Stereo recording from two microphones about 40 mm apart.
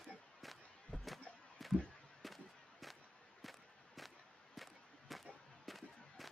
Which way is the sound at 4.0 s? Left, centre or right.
Centre.